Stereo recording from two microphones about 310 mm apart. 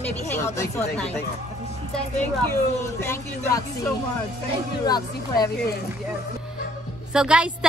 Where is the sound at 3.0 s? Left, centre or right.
Centre.